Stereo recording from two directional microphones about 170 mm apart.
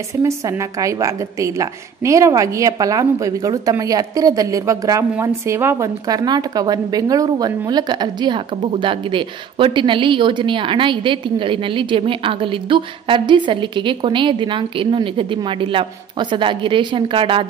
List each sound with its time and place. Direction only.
0.2 s speech: 20° right (ahead or behind)